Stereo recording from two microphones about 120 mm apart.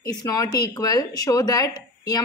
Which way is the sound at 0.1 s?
30° left (ahead or behind).